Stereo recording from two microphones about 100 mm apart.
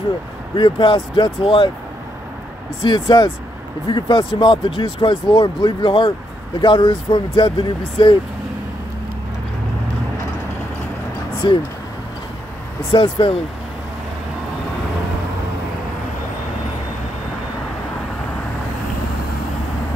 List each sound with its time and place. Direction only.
0.6 s speech: 55° left (ahead or behind)
2.8 s speech: 55° left (ahead or behind)
11.4 s speech: 50° left (ahead or behind)
12.9 s speech: 60° left (ahead or behind)